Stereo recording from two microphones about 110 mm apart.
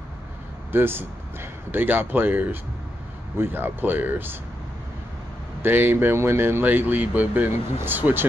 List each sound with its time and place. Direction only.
0.7 s speech: 20° right (ahead or behind)
5.6 s speech: 20° right (ahead or behind)